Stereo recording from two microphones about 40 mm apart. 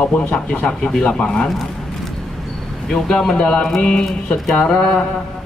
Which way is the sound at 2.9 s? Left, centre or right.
Centre.